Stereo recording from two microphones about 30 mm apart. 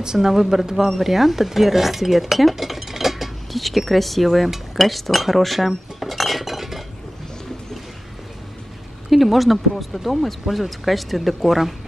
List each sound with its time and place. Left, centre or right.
0.0 s speech: right
0.3 s speech: centre
0.9 s speech: centre
9.1 s speech: centre